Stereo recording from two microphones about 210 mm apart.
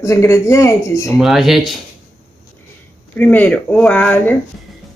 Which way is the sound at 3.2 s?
10° left (ahead or behind).